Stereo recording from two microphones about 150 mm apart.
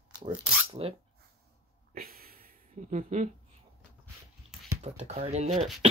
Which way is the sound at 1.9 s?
80° right.